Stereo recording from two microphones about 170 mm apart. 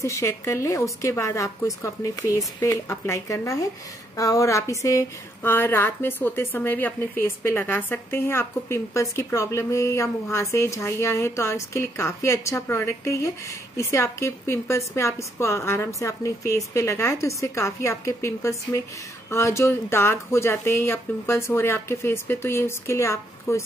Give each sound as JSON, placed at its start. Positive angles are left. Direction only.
{"t": 0.0, "sound": "a woman's voice", "side_deg": 15}